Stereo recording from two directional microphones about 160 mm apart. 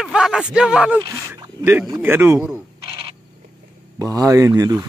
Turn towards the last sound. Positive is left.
turn(degrees=-20)  # may be behind; listen again after turning